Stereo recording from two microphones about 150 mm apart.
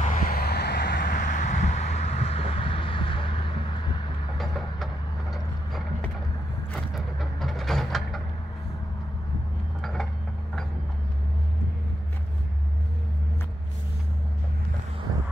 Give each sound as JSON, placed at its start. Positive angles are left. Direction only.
{"t": 0.1, "sound": "vehicle", "side_deg": 80}
{"t": 4.4, "sound": "vehicle", "side_deg": 0}
{"t": 6.9, "sound": "vehicle", "side_deg": 0}
{"t": 9.8, "sound": "mechanisms", "side_deg": 0}